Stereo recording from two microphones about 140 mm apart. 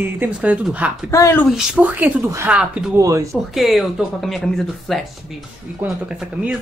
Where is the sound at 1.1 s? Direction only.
20° left (ahead or behind).